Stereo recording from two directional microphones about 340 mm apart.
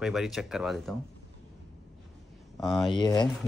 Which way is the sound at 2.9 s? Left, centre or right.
Centre.